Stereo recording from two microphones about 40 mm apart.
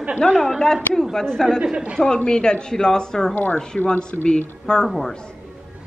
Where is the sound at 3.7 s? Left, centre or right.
Left.